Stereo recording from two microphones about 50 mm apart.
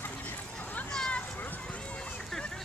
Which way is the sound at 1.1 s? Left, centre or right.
Left.